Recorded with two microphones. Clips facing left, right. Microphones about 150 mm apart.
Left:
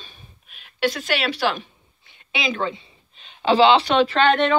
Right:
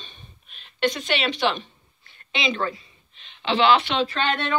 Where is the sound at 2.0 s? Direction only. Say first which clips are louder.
Left 1 dB; 15° left (ahead or behind).